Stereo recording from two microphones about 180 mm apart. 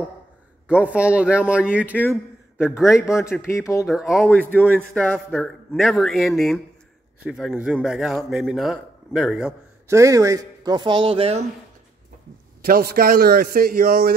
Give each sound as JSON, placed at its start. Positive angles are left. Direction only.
{"t": 0.7, "sound": "speech", "side_deg": -5}
{"t": 2.9, "sound": "a man's voice", "side_deg": 15}
{"t": 3.8, "sound": "a man's voice", "side_deg": 0}
{"t": 4.3, "sound": "a man's voice", "side_deg": 10}
{"t": 9.8, "sound": "speech", "side_deg": -15}
{"t": 12.6, "sound": "a man's voice", "side_deg": -55}